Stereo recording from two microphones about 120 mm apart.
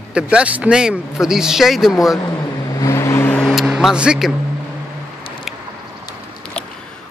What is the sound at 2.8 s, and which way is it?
Vehicle, 25° left (ahead or behind).